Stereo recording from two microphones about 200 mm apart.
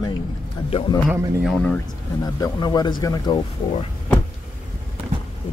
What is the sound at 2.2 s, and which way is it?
Speech, 20° left (ahead or behind).